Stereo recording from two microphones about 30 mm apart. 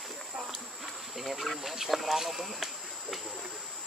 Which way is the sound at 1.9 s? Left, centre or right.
Centre.